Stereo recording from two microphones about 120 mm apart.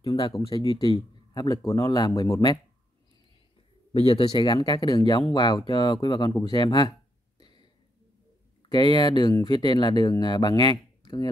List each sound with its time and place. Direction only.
0.0 s speech: 50° left (ahead or behind); by 2.4 s 30° left (ahead or behind)
4.0 s a man's voice: 50° left (ahead or behind)
6.5 s a sound: 40° left (ahead or behind)
8.6 s speech: 40° left (ahead or behind)